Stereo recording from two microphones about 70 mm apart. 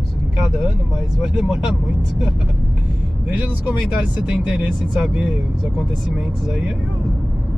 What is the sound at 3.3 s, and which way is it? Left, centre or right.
Speech, right.